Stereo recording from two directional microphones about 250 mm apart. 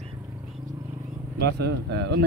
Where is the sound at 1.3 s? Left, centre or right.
Right.